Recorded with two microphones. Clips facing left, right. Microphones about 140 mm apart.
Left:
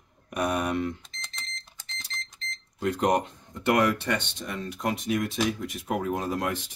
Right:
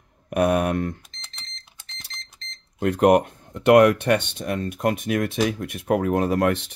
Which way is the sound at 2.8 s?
60° right (ahead or behind).